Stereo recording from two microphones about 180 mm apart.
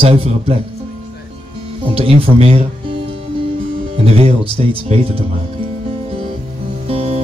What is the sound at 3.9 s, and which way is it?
A man's voice, 35° right (ahead or behind).